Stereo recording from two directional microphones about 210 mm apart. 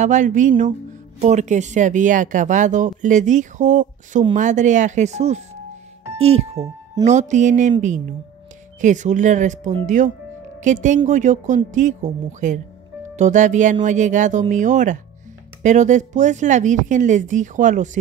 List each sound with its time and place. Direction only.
0.0 s speech: 35° right (ahead or behind)
8.8 s speech: 35° right (ahead or behind)